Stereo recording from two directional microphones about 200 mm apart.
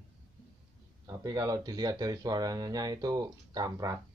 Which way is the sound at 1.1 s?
15° right (ahead or behind).